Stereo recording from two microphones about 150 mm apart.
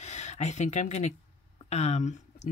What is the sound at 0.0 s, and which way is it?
Speech, 50° left (ahead or behind).